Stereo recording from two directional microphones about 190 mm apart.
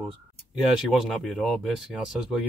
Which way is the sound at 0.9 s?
Centre (ahead or behind).